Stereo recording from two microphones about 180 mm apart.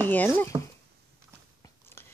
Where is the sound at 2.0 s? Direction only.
15° left (ahead or behind).